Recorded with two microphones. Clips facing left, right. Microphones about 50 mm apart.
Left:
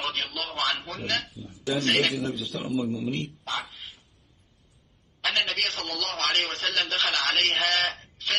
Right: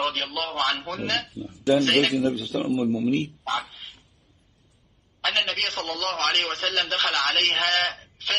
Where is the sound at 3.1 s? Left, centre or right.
Right.